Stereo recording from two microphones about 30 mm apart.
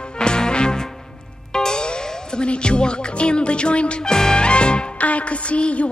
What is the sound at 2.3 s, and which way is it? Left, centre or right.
Speech, left.